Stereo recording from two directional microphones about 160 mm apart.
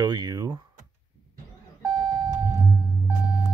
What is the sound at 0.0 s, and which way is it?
Speech, 25° right (ahead or behind).